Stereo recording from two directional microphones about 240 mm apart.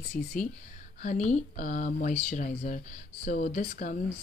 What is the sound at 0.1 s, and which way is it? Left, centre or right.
Speech, left.